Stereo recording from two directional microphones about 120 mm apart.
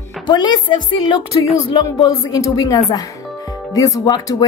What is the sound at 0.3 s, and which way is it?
Speech, 35° left (ahead or behind).